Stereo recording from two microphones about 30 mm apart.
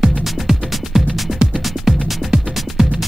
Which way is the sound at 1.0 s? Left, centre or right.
Centre.